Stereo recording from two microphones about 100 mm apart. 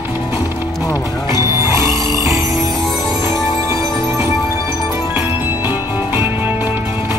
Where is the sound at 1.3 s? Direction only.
35° right (ahead or behind).